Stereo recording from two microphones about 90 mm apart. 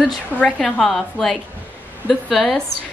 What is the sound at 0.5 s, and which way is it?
A woman's voice, centre (ahead or behind).